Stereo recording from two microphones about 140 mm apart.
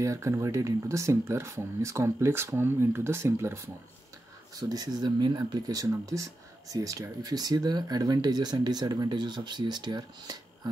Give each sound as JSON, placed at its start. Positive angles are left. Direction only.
{"t": 0.0, "sound": "speech", "side_deg": -20}